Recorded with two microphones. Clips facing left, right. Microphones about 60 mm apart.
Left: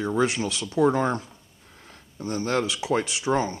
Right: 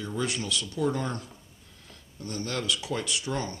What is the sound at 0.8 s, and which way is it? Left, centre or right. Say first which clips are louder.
Speech: left 8 dB; left.